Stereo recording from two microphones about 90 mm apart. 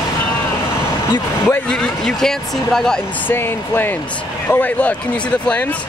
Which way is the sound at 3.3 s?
20° left (ahead or behind).